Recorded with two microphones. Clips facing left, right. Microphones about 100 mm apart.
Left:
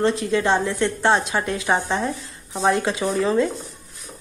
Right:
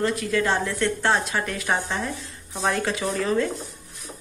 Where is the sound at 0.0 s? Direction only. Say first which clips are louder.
Left 3 dB; 25° left (ahead or behind).